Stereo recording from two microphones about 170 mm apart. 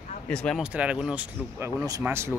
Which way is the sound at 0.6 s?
5° right (ahead or behind).